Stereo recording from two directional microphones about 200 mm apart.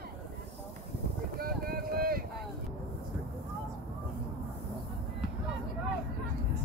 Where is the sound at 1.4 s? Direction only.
50° right (ahead or behind).